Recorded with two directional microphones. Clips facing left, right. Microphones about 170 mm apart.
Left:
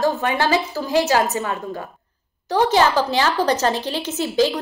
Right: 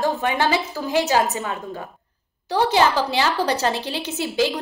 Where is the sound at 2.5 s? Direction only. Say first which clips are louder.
Left 2 dB; 15° right (ahead or behind).